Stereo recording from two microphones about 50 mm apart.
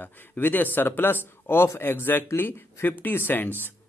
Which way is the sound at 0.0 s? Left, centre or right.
Left.